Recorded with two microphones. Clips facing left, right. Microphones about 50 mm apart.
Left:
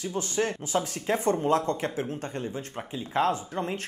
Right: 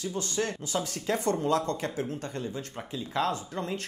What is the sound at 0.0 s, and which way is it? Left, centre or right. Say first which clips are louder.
Speech: left 2 dB; left.